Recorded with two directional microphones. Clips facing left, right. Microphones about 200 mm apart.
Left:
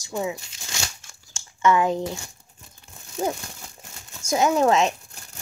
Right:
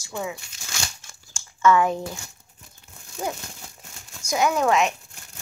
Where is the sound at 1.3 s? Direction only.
20° left (ahead or behind).